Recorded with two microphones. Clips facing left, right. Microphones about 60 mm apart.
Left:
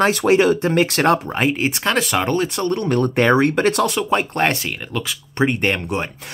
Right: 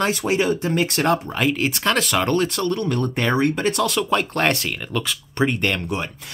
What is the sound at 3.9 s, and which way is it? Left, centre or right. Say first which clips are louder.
Speech: left 1 dB; left.